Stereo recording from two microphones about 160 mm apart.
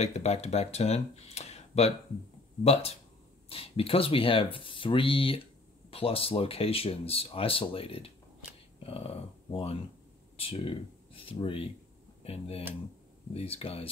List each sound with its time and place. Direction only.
0.0 s speech: 40° left (ahead or behind)